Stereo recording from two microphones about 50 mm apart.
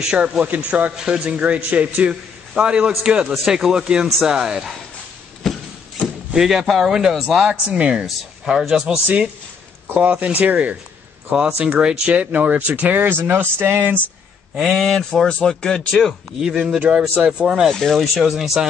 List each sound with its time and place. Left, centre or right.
0.0 s speech: centre
0.4 s a man's voice: right
5.4 s a sound: centre
6.3 s speech: centre
7.4 s a man's voice: right
7.9 s a man's voice: centre
11.8 s speech: centre
12.1 s speech: right
14.5 s speech: centre
14.8 s speech: centre
16.3 s speech: centre
17.6 s speech: centre
17.9 s speech: centre